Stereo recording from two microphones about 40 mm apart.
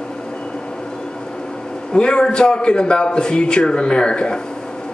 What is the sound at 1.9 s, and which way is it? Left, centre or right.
A man's voice, left.